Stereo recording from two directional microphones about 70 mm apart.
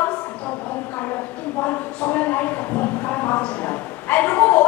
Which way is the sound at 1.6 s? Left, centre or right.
Left.